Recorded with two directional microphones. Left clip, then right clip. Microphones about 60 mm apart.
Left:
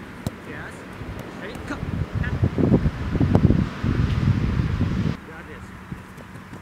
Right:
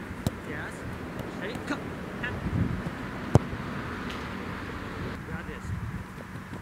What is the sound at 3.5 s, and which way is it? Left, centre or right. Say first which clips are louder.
Vehicle: left 7 dB; left.